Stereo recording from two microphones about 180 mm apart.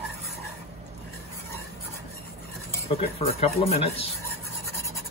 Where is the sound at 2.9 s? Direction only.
35° left (ahead or behind).